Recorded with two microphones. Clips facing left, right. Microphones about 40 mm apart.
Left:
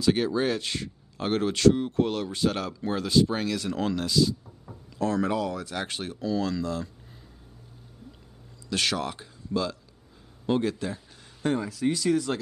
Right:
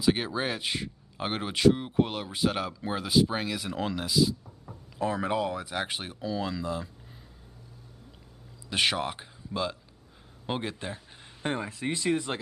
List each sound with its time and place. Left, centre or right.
0.0 s speech: centre
8.6 s speech: right